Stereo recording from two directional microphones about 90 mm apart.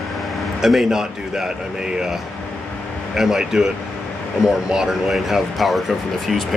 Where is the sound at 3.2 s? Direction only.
5° right (ahead or behind).